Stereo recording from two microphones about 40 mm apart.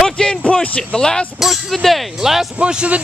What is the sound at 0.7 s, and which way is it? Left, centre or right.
Speech, centre.